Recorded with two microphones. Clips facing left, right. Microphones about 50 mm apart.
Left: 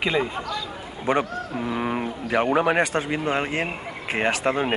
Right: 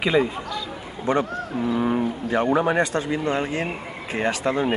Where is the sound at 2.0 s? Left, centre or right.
Left.